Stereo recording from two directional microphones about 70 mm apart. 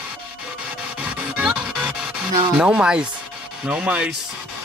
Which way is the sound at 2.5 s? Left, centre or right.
Centre.